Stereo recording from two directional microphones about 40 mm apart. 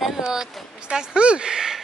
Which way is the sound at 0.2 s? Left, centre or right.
Centre.